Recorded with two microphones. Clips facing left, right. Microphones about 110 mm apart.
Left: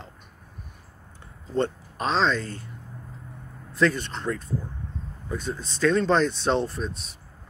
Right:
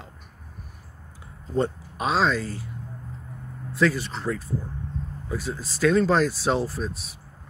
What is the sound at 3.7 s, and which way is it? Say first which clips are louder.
Speech: even; 5° right (ahead or behind).